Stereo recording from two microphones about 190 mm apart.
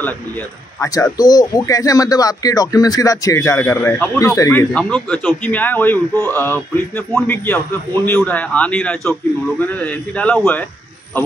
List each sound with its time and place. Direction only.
0.7 s speech: 20° left (ahead or behind)